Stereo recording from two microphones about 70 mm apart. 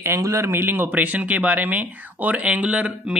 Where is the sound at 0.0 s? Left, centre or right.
Right.